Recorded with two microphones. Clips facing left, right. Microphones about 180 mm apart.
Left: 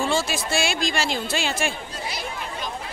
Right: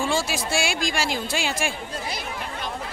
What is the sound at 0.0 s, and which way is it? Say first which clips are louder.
Speech: left 1 dB; 10° right (ahead or behind).